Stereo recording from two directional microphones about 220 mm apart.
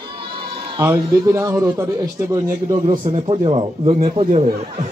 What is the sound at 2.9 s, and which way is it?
Speech, 25° right (ahead or behind).